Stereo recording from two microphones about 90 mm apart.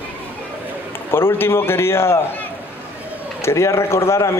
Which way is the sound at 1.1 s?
25° left (ahead or behind).